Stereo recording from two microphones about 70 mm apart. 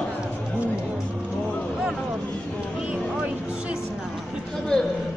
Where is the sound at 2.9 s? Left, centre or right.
Centre.